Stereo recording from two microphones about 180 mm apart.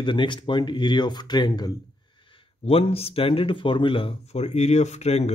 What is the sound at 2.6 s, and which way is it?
Speech, 35° left (ahead or behind).